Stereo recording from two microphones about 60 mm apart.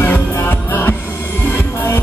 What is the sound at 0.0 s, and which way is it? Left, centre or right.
Music, left.